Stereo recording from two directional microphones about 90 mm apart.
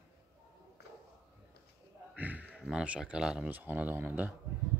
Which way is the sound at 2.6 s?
10° right (ahead or behind).